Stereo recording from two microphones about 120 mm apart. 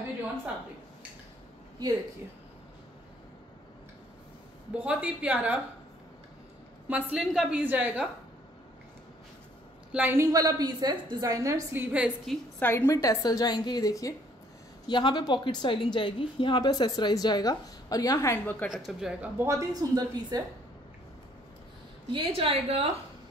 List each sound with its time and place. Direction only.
4.7 s a woman's voice: 10° right (ahead or behind)
6.9 s a woman's voice: 10° right (ahead or behind)
9.9 s a woman's voice: 20° right (ahead or behind)
11.7 s a woman's voice: 15° right (ahead or behind)
12.5 s a woman's voice: 20° left (ahead or behind)
18.4 s a woman's voice: 15° left (ahead or behind)
18.9 s speech: 5° right (ahead or behind)
19.3 s a woman's voice: 25° right (ahead or behind)
22.1 s a woman's voice: 50° right (ahead or behind)